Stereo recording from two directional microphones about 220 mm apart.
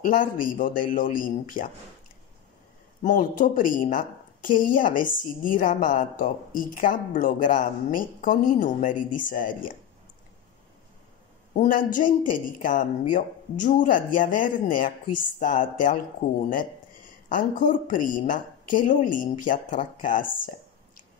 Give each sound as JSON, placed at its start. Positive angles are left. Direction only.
{"t": 0.0, "sound": "a woman's voice", "side_deg": 35}
{"t": 3.0, "sound": "a woman's voice", "side_deg": 35}
{"t": 11.5, "sound": "a woman's voice", "side_deg": 35}